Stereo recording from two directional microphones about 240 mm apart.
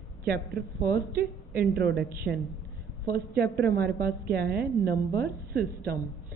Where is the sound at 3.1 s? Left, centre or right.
Right.